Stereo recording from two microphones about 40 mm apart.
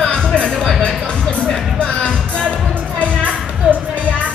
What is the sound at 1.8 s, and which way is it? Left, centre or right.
Music, left.